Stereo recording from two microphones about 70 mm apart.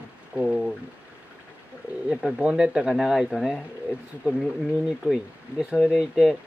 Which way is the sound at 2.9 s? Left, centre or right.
Centre.